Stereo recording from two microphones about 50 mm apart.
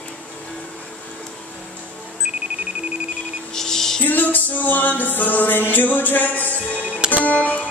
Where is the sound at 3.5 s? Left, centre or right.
Centre.